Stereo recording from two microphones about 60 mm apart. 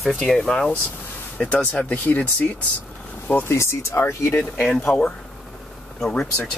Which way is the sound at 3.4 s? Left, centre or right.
Left.